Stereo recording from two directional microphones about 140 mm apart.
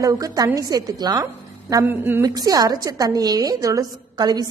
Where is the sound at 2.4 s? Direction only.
25° right (ahead or behind).